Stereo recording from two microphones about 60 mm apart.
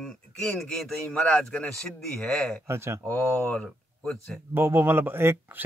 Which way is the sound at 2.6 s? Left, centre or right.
Right.